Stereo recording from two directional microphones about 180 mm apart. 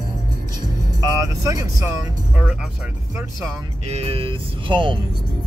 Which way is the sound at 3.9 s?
35° right (ahead or behind).